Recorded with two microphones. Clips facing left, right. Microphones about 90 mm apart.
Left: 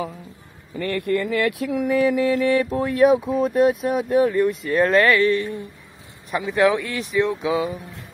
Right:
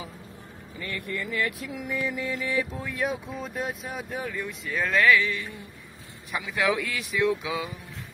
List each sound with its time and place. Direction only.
0.7 s mantra: 65° left (ahead or behind)
4.9 s speech: 40° left (ahead or behind)
6.4 s speech: 35° left (ahead or behind)